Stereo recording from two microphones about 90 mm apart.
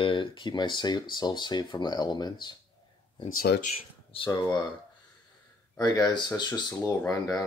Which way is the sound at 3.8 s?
90° left.